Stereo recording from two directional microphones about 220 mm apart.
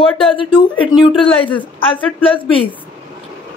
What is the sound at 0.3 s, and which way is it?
A woman's voice, 20° left (ahead or behind).